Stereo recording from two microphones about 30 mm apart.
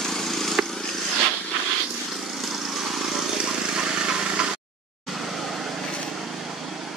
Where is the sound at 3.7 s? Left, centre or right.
Right.